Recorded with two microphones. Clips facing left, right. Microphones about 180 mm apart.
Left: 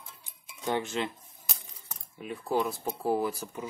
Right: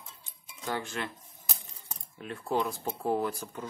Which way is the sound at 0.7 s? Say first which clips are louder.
Left 4 dB; 20° left (ahead or behind).